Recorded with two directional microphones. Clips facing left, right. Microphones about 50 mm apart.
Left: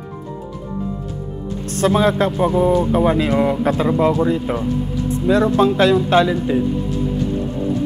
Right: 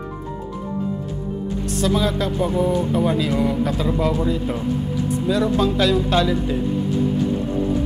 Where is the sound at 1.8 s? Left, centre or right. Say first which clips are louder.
Left 6 dB; left; by 6.6 s centre.